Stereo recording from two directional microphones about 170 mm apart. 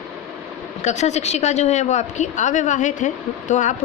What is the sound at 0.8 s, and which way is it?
A woman's voice, 45° left (ahead or behind).